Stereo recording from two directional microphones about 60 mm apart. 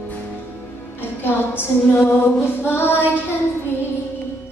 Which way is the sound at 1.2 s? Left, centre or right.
Left.